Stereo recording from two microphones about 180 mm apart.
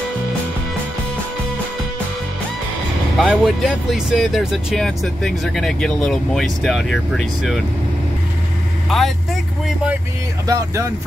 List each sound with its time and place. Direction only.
3.2 s speech: centre (ahead or behind)
8.8 s vehicle: centre (ahead or behind)
10.4 s speech: 20° right (ahead or behind)